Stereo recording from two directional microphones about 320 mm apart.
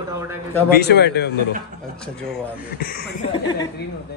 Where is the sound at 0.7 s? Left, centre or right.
Left.